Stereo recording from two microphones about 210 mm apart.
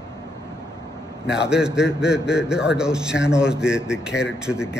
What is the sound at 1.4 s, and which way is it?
A man's voice, 5° right (ahead or behind).